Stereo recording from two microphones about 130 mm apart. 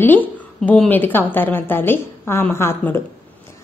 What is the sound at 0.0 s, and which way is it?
A woman's voice, 15° left (ahead or behind).